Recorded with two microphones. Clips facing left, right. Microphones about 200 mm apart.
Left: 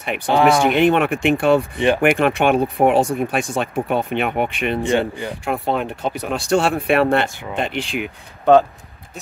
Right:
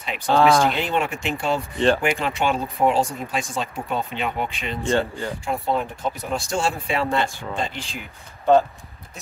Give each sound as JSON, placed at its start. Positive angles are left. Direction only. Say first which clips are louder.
{"t": 0.3, "sound": "speech", "louder": "left 2 dB", "side_deg": 15}
{"t": 0.7, "sound": "speech", "louder": "left 9 dB", "side_deg": 60}
{"t": 4.8, "sound": "speech", "louder": "even", "side_deg": 15}
{"t": 5.4, "sound": "speech", "louder": "left 3 dB", "side_deg": 65}